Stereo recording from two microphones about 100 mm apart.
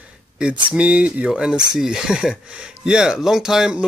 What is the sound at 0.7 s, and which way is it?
Speech, 10° right (ahead or behind).